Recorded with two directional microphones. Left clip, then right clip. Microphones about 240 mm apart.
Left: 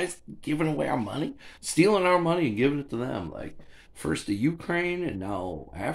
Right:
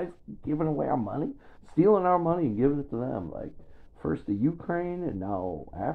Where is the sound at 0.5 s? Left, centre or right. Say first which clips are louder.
Left 1 dB; left.